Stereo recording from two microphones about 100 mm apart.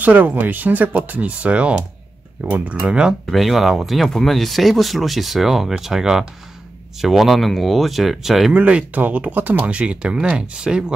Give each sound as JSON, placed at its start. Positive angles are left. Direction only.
{"t": 0.0, "sound": "speech", "side_deg": -15}
{"t": 8.5, "sound": "speech", "side_deg": -15}